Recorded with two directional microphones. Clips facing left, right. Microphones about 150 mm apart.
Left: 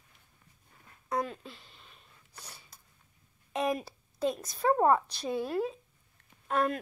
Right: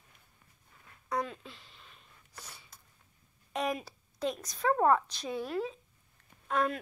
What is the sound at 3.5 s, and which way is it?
A woman's voice, 25° left (ahead or behind).